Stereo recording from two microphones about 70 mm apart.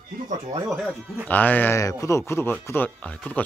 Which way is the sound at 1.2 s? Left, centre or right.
Left.